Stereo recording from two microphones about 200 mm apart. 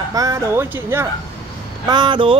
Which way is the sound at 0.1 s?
15° right (ahead or behind).